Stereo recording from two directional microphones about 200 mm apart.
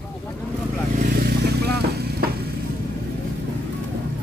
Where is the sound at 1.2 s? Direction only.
55° right (ahead or behind).